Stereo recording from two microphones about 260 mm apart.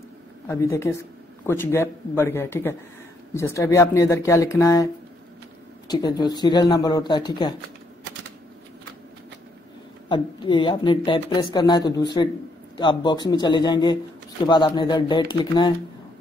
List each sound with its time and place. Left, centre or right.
0.5 s speech: centre
5.9 s speech: centre
10.0 s speech: centre